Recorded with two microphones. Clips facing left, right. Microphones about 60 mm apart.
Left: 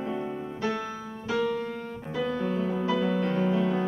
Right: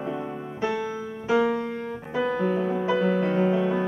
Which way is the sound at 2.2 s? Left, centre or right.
Right.